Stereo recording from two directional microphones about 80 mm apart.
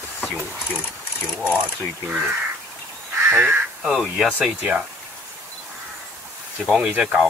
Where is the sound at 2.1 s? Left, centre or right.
Centre.